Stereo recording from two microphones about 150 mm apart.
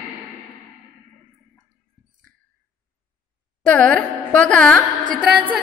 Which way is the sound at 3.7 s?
10° left (ahead or behind).